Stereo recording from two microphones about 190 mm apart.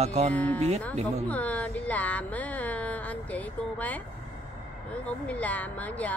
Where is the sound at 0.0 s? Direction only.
35° right (ahead or behind).